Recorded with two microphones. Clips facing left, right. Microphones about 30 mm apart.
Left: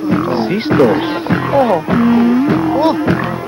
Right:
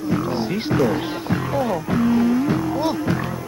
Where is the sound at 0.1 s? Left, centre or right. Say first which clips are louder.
Left 7 dB; left.